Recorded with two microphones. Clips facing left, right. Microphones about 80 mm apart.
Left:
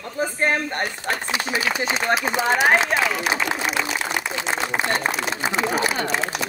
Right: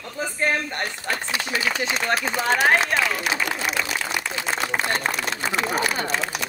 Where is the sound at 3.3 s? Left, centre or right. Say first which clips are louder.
Left 2 dB; centre.